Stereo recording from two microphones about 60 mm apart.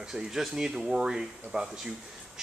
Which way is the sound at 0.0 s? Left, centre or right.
Centre.